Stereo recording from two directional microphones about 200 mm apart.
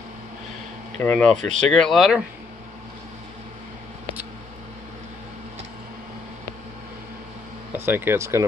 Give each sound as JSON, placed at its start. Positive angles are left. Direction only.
{"t": 1.0, "sound": "speech", "side_deg": 10}
{"t": 7.7, "sound": "speech", "side_deg": -10}